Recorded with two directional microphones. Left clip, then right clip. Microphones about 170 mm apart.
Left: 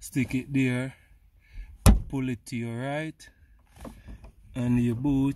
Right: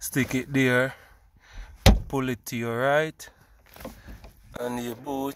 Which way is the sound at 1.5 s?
10° left (ahead or behind).